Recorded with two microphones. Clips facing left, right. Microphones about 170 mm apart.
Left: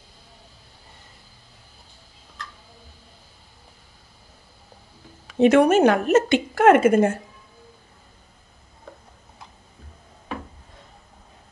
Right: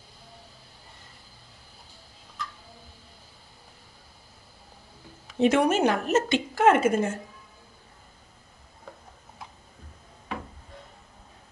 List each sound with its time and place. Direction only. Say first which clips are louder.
5.4 s a woman's voice: left 6 dB; 55° left (ahead or behind)